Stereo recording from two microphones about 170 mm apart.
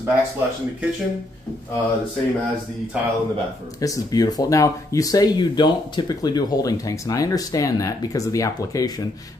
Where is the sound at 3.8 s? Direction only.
20° left (ahead or behind).